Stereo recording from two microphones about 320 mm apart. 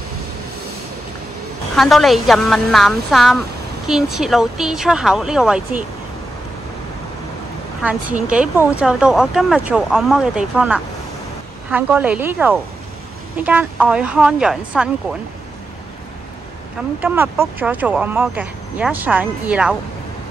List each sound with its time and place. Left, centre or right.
1.8 s speech: centre
7.8 s speech: centre
17.0 s speech: centre